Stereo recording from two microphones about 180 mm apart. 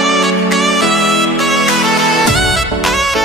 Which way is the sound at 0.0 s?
Centre (ahead or behind).